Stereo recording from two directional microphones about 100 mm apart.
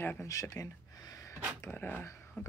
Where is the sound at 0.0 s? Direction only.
20° left (ahead or behind).